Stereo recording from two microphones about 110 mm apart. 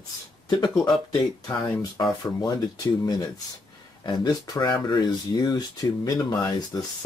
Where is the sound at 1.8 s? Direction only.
35° left (ahead or behind).